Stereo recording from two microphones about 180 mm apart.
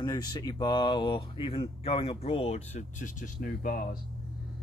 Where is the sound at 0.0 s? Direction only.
20° left (ahead or behind).